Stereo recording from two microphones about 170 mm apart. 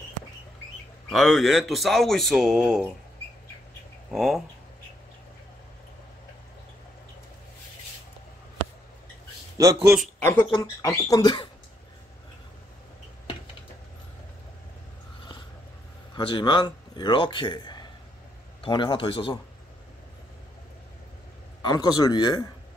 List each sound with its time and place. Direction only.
1.1 s speech: centre (ahead or behind)
4.1 s speech: centre (ahead or behind)
9.6 s a man's voice: 15° right (ahead or behind)
10.3 s speech: 25° left (ahead or behind)
16.2 s a man's voice: 30° left (ahead or behind)
21.6 s speech: 25° left (ahead or behind)